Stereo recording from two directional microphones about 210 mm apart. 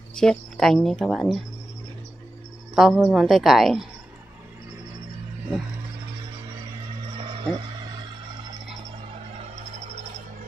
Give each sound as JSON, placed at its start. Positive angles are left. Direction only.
{"t": 0.1, "sound": "speech", "side_deg": 5}
{"t": 2.7, "sound": "speech", "side_deg": 0}
{"t": 7.2, "sound": "a sound", "side_deg": -20}